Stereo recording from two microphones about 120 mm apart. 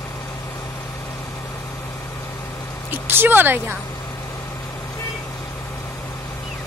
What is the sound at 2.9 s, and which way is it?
Speech, 15° right (ahead or behind).